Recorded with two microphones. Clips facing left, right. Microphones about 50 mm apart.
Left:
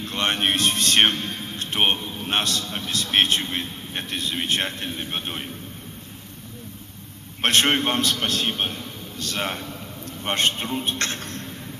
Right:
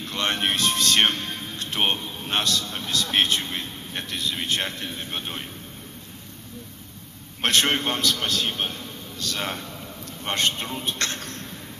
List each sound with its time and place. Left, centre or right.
0.1 s a man's voice: centre
1.0 s music: centre
1.7 s a man's voice: centre
2.2 s a man's voice: centre
7.4 s a man's voice: centre
10.2 s speech: centre
10.5 s a man's voice: centre
11.1 s mouse: centre